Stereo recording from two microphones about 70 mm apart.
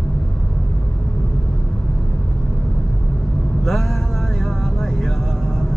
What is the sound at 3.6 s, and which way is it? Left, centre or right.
Vehicle, centre.